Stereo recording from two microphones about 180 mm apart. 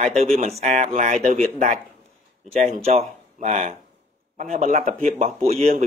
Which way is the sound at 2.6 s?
40° right (ahead or behind).